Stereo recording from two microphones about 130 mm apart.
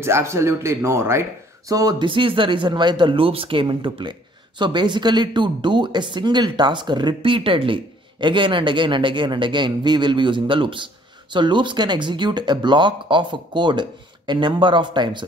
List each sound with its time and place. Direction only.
0.0 s speech: 20° right (ahead or behind); by 15.2 s 35° right (ahead or behind)